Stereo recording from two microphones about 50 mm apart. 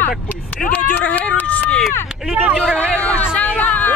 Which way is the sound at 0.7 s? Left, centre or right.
Left.